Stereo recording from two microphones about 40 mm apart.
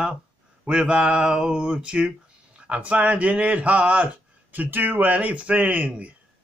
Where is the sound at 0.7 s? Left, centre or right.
Right.